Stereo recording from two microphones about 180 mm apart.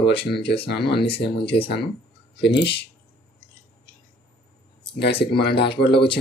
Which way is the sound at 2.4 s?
70° left (ahead or behind).